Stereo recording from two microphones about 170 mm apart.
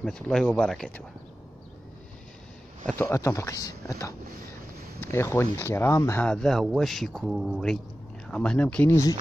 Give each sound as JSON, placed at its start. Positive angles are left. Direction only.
{"t": 0.0, "sound": "speech", "side_deg": 5}
{"t": 2.9, "sound": "speech", "side_deg": 15}
{"t": 6.2, "sound": "speech", "side_deg": 5}